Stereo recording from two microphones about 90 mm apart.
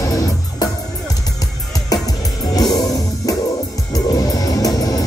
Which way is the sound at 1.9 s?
45° left (ahead or behind).